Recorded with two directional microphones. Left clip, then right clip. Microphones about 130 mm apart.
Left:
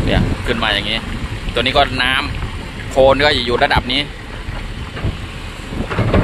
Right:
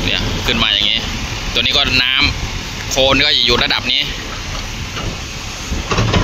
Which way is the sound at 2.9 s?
50° left (ahead or behind).